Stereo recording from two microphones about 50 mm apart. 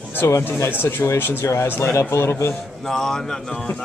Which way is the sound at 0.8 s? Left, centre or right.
Left.